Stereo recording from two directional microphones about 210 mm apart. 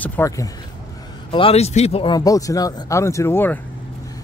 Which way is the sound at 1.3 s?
25° left (ahead or behind).